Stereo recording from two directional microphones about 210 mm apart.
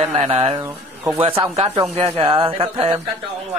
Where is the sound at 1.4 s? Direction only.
30° right (ahead or behind).